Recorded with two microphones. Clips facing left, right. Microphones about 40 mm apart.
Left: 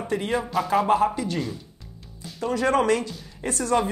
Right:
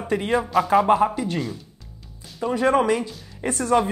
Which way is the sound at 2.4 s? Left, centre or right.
Centre.